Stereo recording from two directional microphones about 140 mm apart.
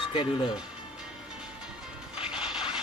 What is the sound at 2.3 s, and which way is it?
Printer, 5° right (ahead or behind).